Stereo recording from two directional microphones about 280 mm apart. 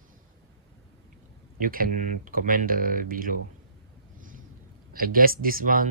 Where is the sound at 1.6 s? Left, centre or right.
Right.